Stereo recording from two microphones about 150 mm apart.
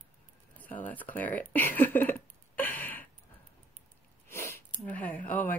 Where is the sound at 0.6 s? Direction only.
10° left (ahead or behind).